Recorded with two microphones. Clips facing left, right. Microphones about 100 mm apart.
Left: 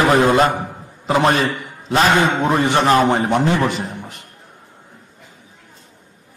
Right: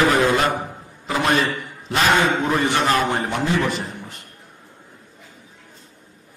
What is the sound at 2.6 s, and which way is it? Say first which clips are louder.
A man's voice: left 7 dB; 25° left (ahead or behind).